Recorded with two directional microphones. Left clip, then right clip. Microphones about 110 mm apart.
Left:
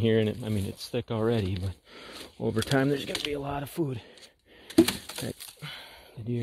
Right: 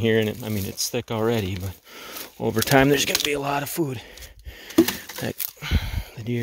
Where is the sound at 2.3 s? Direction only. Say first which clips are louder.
Right 8 dB; 35° right (ahead or behind).